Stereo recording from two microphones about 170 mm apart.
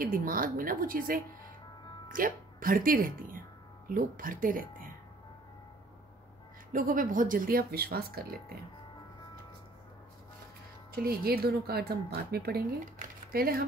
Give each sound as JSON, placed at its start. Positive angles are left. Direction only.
{"t": 0.0, "sound": "speech", "side_deg": -55}
{"t": 6.7, "sound": "speech", "side_deg": -50}
{"t": 10.9, "sound": "speech", "side_deg": -60}